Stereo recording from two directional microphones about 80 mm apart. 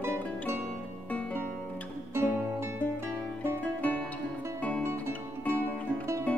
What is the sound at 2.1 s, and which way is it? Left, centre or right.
Music, right.